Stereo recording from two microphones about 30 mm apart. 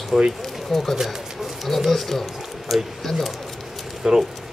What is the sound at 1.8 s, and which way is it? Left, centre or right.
Speech, centre.